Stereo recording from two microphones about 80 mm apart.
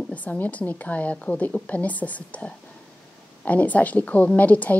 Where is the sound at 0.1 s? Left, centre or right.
Centre.